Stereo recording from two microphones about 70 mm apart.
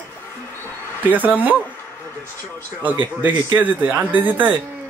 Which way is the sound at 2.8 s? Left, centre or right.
Right.